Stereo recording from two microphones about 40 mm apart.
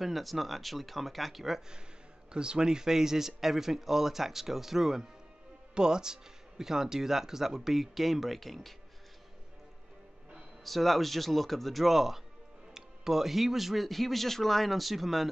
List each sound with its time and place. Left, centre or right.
0.0 s speech: centre
2.3 s speech: right; by 8.7 s centre
10.6 s speech: centre